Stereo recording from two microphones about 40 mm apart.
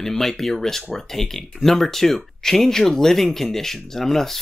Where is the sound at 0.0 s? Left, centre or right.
Centre.